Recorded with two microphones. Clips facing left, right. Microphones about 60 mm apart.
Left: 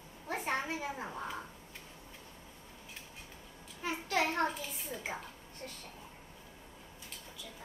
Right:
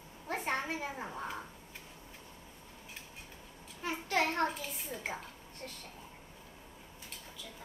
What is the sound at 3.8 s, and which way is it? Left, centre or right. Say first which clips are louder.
A child's voice: even; centre.